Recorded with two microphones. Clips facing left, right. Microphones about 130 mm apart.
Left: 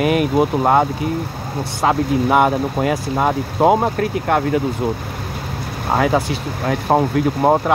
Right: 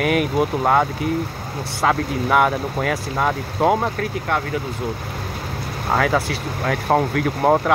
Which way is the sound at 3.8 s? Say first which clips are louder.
Left 5 dB; 45° left (ahead or behind).